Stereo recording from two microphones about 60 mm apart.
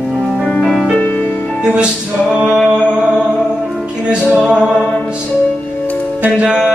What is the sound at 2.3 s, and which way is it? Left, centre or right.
Music, centre.